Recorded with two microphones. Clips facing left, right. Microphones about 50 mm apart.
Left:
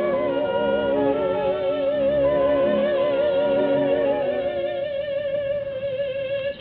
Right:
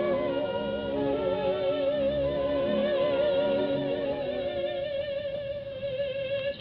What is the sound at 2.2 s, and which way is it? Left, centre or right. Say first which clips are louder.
Music: left 8 dB; left.